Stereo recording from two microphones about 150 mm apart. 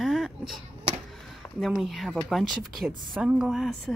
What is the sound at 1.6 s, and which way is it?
Speech, centre (ahead or behind).